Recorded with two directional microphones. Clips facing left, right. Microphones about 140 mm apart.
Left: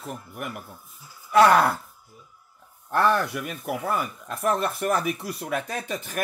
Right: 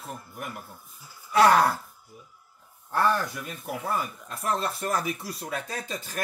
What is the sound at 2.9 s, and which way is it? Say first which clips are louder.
Speech: left 3 dB; 65° left (ahead or behind).